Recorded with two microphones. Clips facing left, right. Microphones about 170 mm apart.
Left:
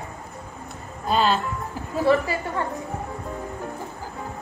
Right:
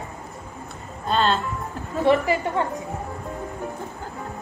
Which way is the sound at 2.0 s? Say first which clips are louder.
Right 2 dB; 20° right (ahead or behind).